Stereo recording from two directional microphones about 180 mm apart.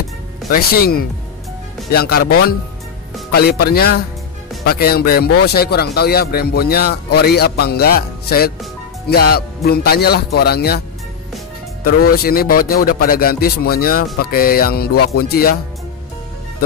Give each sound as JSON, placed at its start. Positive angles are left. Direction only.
{"t": 0.5, "sound": "speech", "side_deg": 60}
{"t": 11.8, "sound": "speech", "side_deg": 55}